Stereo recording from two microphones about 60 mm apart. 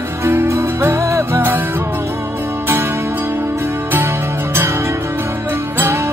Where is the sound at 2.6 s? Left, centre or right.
Right.